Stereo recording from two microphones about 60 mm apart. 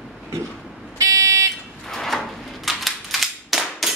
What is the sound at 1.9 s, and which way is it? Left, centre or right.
Cap gun, centre.